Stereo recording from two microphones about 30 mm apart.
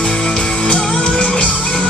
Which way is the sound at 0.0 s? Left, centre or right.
Left.